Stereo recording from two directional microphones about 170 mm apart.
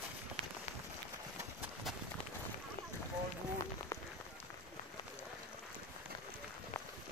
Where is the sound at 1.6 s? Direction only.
Centre (ahead or behind).